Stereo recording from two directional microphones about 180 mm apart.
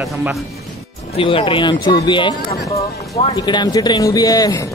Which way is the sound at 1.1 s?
30° left (ahead or behind).